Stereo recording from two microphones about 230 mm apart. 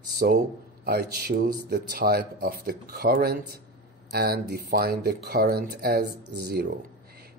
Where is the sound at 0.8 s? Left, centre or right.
Right.